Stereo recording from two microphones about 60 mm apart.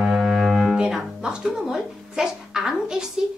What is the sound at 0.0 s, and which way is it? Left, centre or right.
Music, centre.